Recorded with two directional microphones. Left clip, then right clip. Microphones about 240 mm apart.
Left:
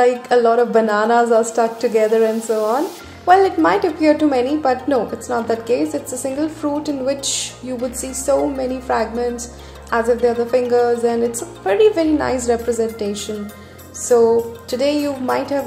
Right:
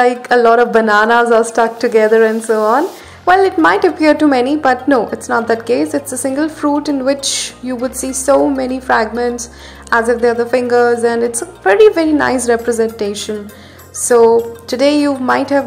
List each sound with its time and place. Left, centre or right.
0.0 s a woman's voice: centre